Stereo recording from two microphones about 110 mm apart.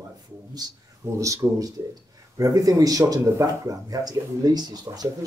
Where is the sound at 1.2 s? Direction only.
30° right (ahead or behind).